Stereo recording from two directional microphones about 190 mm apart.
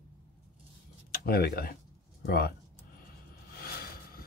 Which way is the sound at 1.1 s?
50° left (ahead or behind).